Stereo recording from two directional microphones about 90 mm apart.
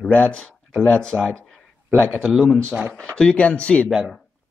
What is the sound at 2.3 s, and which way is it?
Speech, 5° left (ahead or behind).